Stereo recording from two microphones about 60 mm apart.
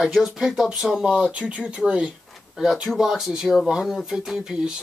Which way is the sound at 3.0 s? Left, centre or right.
Centre.